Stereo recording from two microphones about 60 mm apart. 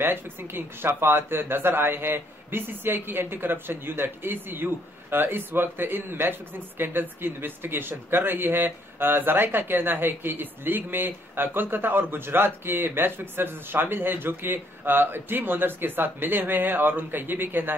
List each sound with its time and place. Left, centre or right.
0.0 s speech: right